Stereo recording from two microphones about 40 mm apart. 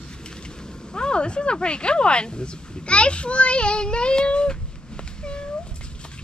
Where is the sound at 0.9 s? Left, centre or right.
Left.